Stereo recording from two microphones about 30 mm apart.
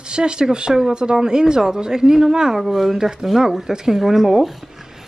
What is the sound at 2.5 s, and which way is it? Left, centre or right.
Speech, centre.